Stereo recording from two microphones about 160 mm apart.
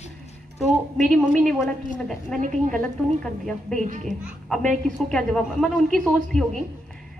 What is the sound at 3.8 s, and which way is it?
Speech, 50° right (ahead or behind).